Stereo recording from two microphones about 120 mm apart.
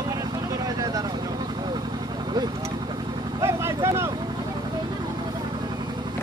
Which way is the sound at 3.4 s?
25° right (ahead or behind).